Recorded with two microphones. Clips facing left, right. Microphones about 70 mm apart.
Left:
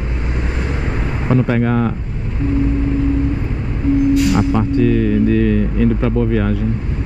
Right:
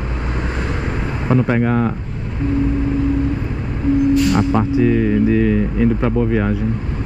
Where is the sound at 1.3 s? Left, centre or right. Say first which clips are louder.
Even; centre.